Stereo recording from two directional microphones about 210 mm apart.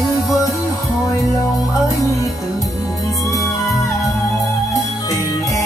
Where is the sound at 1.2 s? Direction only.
15° left (ahead or behind).